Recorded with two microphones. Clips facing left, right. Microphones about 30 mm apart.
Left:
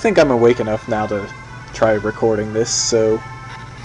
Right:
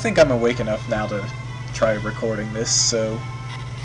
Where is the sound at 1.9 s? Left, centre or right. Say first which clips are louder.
Left 7 dB; centre.